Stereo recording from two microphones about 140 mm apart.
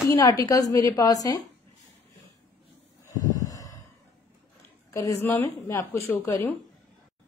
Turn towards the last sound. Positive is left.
turn(degrees=15)  # may be behind; listen again after turning